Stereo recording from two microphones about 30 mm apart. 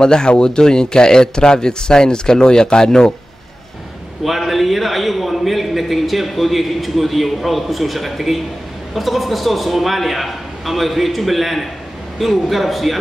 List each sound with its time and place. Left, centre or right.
0.0 s speech: left
4.2 s a man's voice: centre